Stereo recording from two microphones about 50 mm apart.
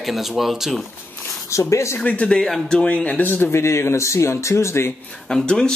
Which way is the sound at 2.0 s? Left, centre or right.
Left.